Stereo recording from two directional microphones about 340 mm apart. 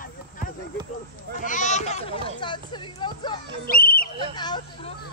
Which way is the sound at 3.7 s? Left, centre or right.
Left.